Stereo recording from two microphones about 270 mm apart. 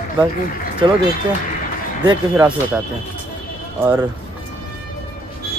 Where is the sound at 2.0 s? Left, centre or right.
Centre.